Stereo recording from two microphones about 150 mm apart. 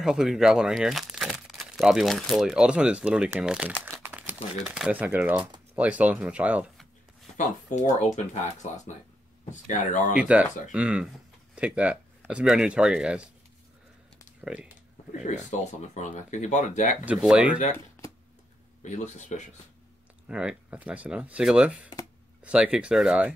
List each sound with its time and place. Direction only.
0.0 s speech: 5° right (ahead or behind)
7.3 s speech: 55° left (ahead or behind)
10.1 s speech: 10° right (ahead or behind)
14.4 s speech: 5° right (ahead or behind)
15.2 s speech: 55° left (ahead or behind)
17.0 s speech: 5° right (ahead or behind)
18.8 s speech: 55° left (ahead or behind)
20.2 s speech: 5° right (ahead or behind)